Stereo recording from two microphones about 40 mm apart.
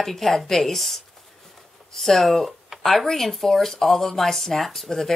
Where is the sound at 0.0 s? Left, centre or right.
Centre.